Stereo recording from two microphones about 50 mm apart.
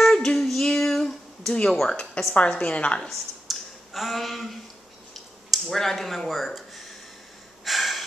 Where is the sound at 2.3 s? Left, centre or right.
Left.